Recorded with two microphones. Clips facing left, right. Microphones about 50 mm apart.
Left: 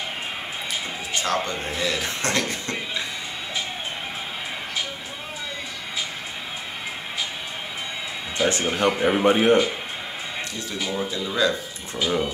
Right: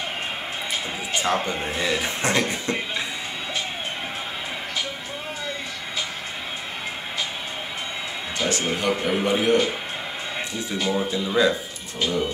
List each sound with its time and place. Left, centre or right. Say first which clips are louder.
1.2 s speech: right 1 dB; centre
8.4 s speech: left 3 dB; left
10.9 s speech: right 4 dB; centre